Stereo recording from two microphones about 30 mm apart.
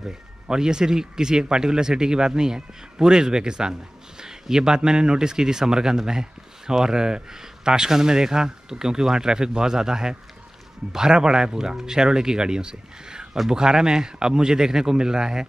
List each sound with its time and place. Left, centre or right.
0.0 s speech: right